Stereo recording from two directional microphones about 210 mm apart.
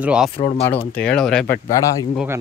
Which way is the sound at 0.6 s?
10° left (ahead or behind).